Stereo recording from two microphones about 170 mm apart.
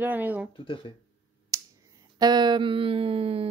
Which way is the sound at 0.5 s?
30° left (ahead or behind).